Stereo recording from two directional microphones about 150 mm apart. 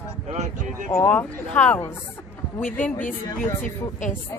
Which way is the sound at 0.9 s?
10° left (ahead or behind).